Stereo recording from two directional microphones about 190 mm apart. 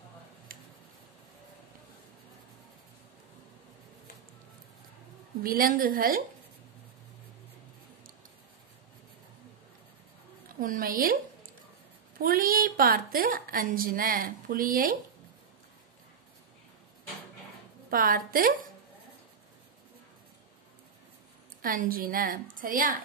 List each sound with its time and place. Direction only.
0.5 s tick-tock: 50° right (ahead or behind)
5.4 s a woman's voice: 50° right (ahead or behind)
10.6 s a woman's voice: 45° right (ahead or behind)
12.2 s a woman's voice: 50° right (ahead or behind)
17.8 s a woman's voice: 50° right (ahead or behind)
21.5 s a woman's voice: 50° right (ahead or behind)